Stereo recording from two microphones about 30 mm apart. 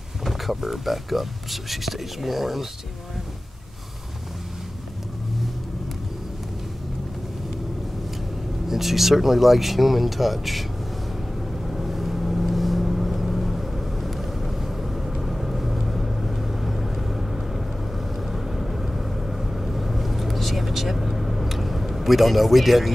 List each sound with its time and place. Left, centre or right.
0.2 s speech: centre
8.6 s speech: centre
11.6 s vehicle: centre